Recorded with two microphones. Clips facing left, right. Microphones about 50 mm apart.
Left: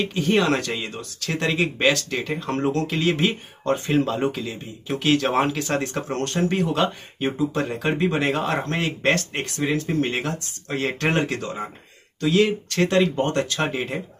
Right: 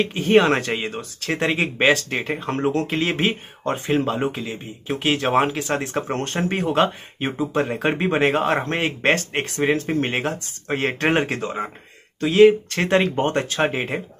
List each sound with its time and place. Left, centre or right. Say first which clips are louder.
0.1 s speech: right 4 dB; right
3.6 s speech: even; centre
5.9 s a man's voice: right 1 dB; right
13.0 s a man's voice: even; right
13.3 s speech: right 2 dB; right